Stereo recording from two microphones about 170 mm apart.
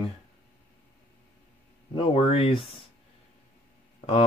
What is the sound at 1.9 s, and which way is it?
Speech, 35° left (ahead or behind).